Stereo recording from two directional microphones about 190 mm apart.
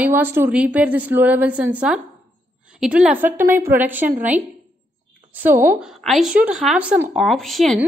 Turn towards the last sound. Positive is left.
turn(degrees=0)  # may be behind; listen again after turning